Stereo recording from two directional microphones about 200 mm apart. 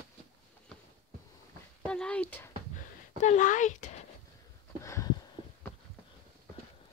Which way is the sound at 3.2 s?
40° left (ahead or behind).